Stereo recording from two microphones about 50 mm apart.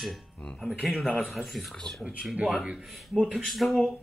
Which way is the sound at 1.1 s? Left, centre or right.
Centre.